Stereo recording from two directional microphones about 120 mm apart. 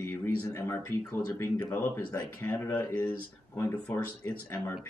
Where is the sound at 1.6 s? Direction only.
15° left (ahead or behind).